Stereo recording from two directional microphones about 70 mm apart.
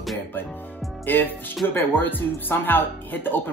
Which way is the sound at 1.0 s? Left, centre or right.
Left.